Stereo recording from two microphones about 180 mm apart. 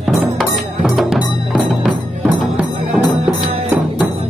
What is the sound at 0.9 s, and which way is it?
Music, 5° right (ahead or behind).